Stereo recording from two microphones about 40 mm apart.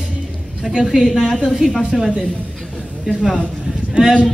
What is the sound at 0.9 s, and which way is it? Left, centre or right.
Speech, centre.